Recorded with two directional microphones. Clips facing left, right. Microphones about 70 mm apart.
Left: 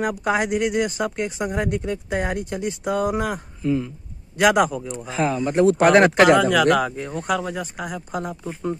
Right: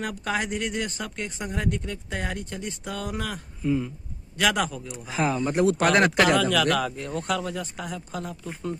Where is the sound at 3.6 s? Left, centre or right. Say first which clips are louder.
Left 2 dB; centre.